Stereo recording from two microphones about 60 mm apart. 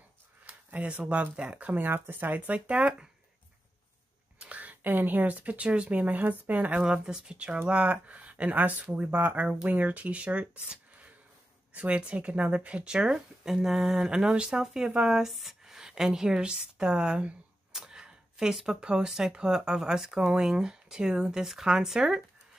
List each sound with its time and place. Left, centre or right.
0.5 s a sound: right
0.8 s speech: right
4.4 s speech: right
11.7 s a woman's voice: right